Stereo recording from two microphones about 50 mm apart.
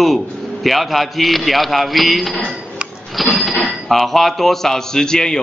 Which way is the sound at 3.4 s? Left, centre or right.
Centre.